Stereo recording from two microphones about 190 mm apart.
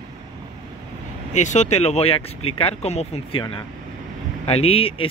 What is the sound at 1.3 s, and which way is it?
Speech, 40° left (ahead or behind).